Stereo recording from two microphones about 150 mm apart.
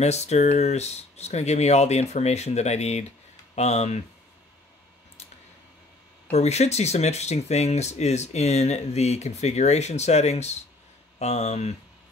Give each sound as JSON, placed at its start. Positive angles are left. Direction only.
{"t": 0.0, "sound": "speech", "side_deg": 45}
{"t": 6.3, "sound": "speech", "side_deg": 45}